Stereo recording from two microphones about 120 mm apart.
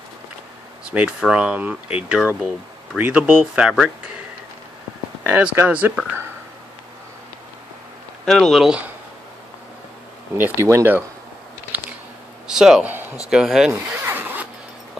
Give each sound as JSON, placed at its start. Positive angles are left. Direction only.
{"t": 0.8, "sound": "speech", "side_deg": -10}
{"t": 5.2, "sound": "speech", "side_deg": -15}
{"t": 8.3, "sound": "speech", "side_deg": 0}
{"t": 10.3, "sound": "speech", "side_deg": -20}
{"t": 11.7, "sound": "a sound", "side_deg": -15}
{"t": 12.4, "sound": "speech", "side_deg": -5}
{"t": 13.7, "sound": "zipper", "side_deg": -15}